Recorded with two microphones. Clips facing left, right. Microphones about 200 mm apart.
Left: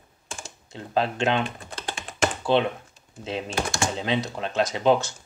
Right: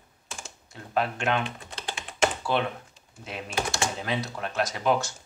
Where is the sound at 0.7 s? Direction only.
30° left (ahead or behind).